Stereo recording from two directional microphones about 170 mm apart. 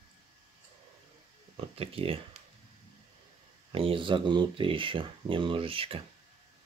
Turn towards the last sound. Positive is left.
turn(degrees=-35)  # may be behind; listen again after turning